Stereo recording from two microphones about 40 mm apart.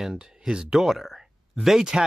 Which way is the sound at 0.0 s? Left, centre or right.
Centre.